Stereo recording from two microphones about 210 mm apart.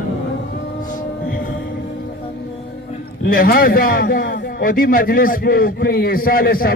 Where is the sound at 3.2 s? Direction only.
45° left (ahead or behind).